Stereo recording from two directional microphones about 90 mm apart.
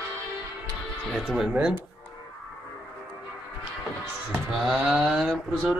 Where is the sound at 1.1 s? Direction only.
5° right (ahead or behind).